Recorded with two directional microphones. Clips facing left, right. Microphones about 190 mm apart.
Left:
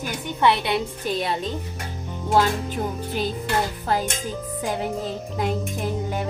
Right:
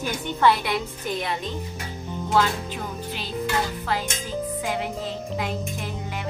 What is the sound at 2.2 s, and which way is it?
Music, 45° left (ahead or behind).